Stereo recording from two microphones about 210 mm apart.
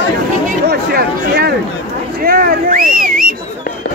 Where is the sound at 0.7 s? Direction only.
45° right (ahead or behind).